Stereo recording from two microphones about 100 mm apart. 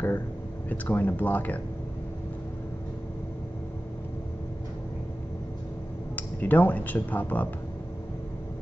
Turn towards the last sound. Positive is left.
turn(degrees=15)  # may be behind; listen again after turning